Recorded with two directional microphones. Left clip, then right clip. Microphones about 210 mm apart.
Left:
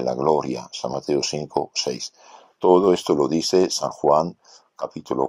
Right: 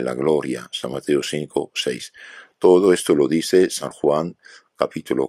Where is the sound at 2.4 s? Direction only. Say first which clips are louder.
Right 2 dB; 30° right (ahead or behind).